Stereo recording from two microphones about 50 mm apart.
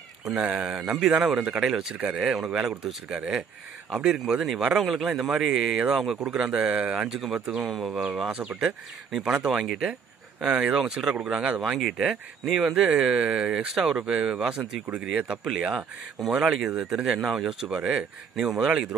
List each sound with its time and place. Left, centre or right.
0.2 s speech: centre
5.2 s speech: centre
7.1 s speech: centre
7.3 s speech: right
7.6 s speech: centre
7.9 s speech: centre
9.5 s speech: centre